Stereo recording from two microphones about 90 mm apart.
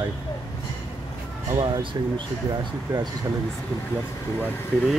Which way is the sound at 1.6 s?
65° right (ahead or behind).